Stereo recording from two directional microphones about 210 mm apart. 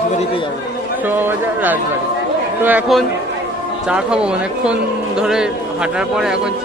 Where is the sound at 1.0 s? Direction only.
10° right (ahead or behind).